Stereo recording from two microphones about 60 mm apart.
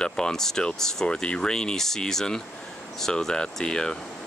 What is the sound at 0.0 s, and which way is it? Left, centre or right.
Speech, centre.